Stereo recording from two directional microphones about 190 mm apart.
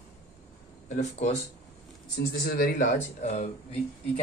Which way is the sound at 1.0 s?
35° left (ahead or behind).